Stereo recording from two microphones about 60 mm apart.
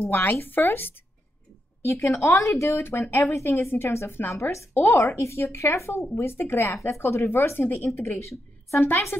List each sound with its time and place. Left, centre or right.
0.1 s speech: left
1.9 s speech: left
2.8 s speech: left
3.3 s speech: left
4.4 s speech: left
7.9 s speech: left
8.8 s speech: left